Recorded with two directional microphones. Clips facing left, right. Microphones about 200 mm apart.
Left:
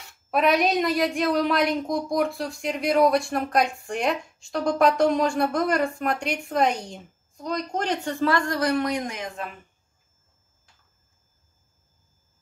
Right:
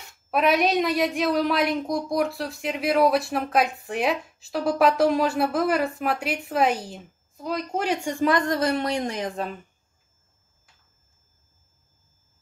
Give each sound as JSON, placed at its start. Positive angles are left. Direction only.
{"t": 0.3, "sound": "a woman's voice", "side_deg": 0}